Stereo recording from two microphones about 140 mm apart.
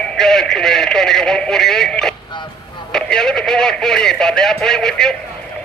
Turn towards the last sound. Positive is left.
turn(degrees=5)  # may be behind; listen again after turning